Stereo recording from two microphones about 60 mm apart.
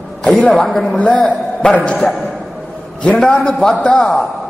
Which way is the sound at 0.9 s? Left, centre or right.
Centre.